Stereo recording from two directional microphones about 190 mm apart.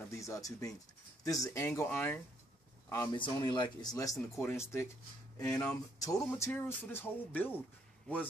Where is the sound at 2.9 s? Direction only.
20° left (ahead or behind).